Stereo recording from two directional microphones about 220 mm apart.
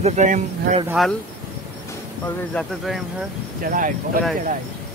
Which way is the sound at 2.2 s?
5° left (ahead or behind).